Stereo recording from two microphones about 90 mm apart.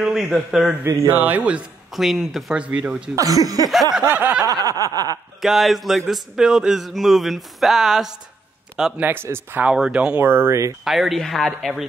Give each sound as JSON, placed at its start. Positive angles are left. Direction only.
{"t": 0.0, "sound": "speech", "side_deg": -5}
{"t": 0.8, "sound": "a sound", "side_deg": -30}
{"t": 2.0, "sound": "speech", "side_deg": 0}
{"t": 2.5, "sound": "speech", "side_deg": -15}
{"t": 3.2, "sound": "speech", "side_deg": -40}
{"t": 4.1, "sound": "a sound", "side_deg": -20}
{"t": 4.5, "sound": "snicker", "side_deg": -40}
{"t": 5.4, "sound": "a man's voice", "side_deg": 0}
{"t": 9.0, "sound": "a sound", "side_deg": -25}
{"t": 9.7, "sound": "speech", "side_deg": -10}
{"t": 10.8, "sound": "speech", "side_deg": -5}